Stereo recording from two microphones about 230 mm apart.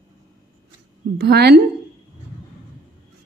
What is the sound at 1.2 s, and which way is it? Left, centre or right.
Speech, right.